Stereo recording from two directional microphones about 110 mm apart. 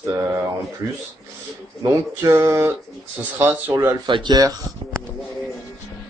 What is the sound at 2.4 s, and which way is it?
A man's voice, 35° right (ahead or behind).